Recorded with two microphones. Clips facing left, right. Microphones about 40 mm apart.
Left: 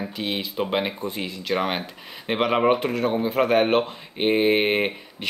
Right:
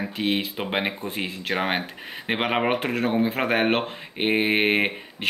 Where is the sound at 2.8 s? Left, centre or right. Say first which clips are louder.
Even; right.